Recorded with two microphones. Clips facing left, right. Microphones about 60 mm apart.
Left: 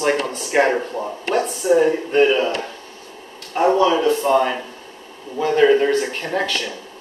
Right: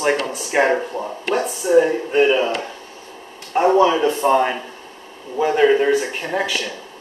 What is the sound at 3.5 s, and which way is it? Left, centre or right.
Speech, centre.